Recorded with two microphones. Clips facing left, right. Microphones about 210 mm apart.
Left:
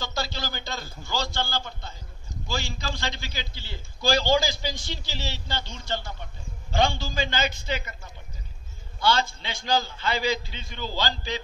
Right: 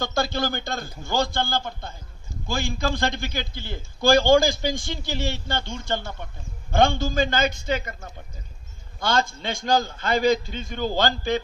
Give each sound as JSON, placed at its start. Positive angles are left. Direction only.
{"t": 0.0, "sound": "a man's voice", "side_deg": -50}